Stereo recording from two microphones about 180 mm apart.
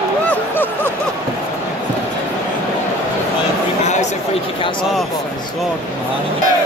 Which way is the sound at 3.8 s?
40° left (ahead or behind).